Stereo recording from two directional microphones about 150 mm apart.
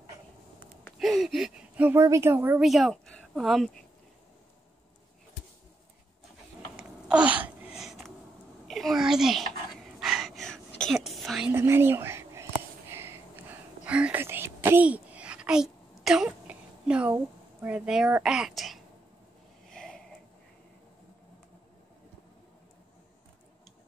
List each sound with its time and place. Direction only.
0.9 s a sound: centre (ahead or behind)
2.0 s a woman's voice: 20° right (ahead or behind)
2.6 s speech: centre (ahead or behind)
6.8 s a sound: 5° right (ahead or behind)
9.8 s whispering: 5° right (ahead or behind)
11.5 s whispering: 15° right (ahead or behind); by 18.8 s centre (ahead or behind)
19.7 s sniff: 5° left (ahead or behind)